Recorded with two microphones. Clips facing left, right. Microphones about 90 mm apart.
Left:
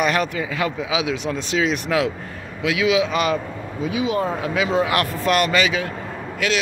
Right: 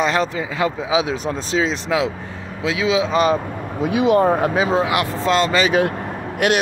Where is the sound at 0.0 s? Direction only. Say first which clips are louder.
Right 1 dB; 25° right (ahead or behind).